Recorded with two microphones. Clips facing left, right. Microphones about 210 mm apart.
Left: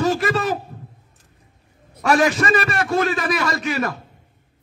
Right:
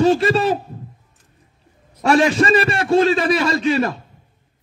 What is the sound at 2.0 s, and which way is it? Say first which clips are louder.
A man's voice: right 3 dB; 30° right (ahead or behind).